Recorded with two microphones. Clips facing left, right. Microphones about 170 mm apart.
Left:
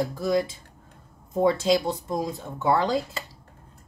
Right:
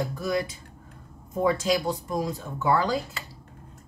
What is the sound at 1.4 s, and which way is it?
Speech, 25° left (ahead or behind).